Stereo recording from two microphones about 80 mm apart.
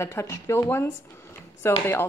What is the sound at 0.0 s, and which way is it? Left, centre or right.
A woman's voice, left.